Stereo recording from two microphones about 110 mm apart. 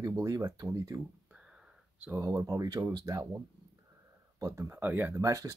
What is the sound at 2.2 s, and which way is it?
Speech, 30° right (ahead or behind).